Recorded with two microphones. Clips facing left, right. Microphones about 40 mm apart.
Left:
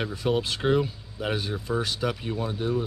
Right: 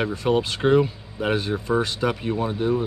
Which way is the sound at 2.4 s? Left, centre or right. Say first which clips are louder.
Right 5 dB; right.